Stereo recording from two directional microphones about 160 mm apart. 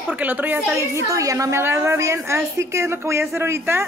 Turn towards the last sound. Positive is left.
turn(degrees=-15)  # may be behind; listen again after turning